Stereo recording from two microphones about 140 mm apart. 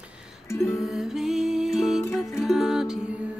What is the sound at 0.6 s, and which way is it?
Music, centre (ahead or behind).